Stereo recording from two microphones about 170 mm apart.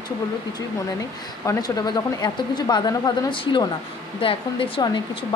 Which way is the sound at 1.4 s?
20° left (ahead or behind).